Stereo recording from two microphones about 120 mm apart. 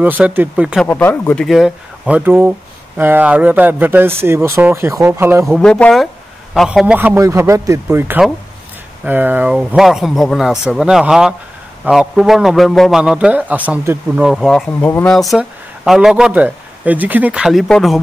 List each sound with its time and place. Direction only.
0.0 s speech: 15° right (ahead or behind)
0.8 s speech: 15° left (ahead or behind)
1.4 s speech: centre (ahead or behind)
2.0 s speech: 15° right (ahead or behind)
5.5 s speech: 5° left (ahead or behind)
7.2 s speech: 25° right (ahead or behind); by 14.6 s 5° right (ahead or behind)
14.8 s speech: 20° left (ahead or behind)
15.0 s speech: centre (ahead or behind)